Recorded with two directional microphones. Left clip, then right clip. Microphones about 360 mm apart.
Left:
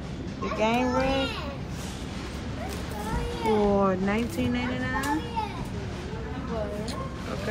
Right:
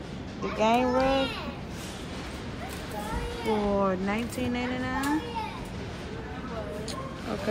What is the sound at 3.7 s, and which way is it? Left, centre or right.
Speech, centre.